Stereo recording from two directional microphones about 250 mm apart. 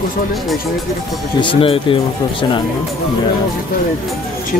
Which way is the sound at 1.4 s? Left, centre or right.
Left.